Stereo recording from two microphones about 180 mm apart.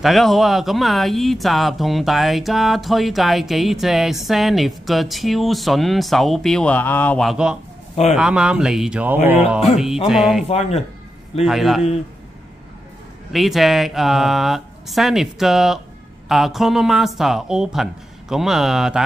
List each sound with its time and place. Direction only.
0.0 s speech: centre (ahead or behind)
7.9 s a man's voice: 35° left (ahead or behind)
8.2 s speech: 5° right (ahead or behind)
10.5 s speech: 35° left (ahead or behind)
11.4 s speech: centre (ahead or behind)
13.3 s speech: centre (ahead or behind)